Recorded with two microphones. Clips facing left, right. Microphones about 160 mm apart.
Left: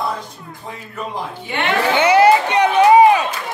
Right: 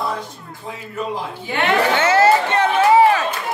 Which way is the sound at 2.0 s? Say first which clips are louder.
Left 5 dB; 15° left (ahead or behind).